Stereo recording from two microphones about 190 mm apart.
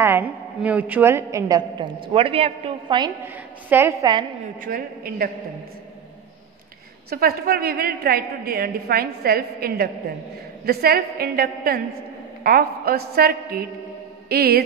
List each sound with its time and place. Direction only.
0.0 s a woman's voice: 10° right (ahead or behind); by 3.1 s 25° right (ahead or behind)
3.6 s a woman's voice: 10° right (ahead or behind)
4.6 s a woman's voice: 45° right (ahead or behind)
7.1 s a woman's voice: 55° right (ahead or behind)
14.3 s music: 55° right (ahead or behind)